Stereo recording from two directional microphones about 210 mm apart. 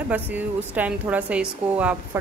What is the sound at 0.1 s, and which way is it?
Speech, 10° right (ahead or behind).